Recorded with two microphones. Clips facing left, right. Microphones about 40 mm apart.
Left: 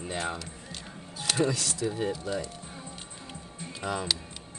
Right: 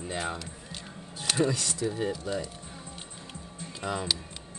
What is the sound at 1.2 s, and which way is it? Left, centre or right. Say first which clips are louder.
Speech: even; centre.